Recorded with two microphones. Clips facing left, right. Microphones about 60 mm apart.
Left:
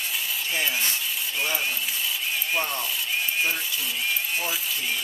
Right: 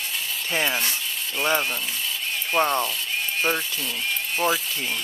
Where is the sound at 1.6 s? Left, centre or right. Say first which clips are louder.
Right 1 dB; centre.